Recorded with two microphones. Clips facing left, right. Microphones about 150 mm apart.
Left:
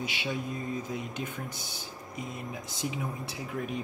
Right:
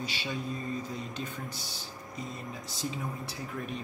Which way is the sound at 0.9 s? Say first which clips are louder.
Left 2 dB; 15° left (ahead or behind).